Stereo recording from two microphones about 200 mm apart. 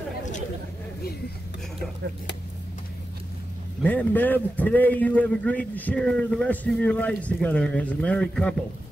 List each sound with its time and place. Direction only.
3.8 s a man's voice: 10° left (ahead or behind)